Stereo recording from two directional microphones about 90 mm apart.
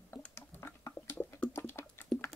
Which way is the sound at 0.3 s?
25° left (ahead or behind).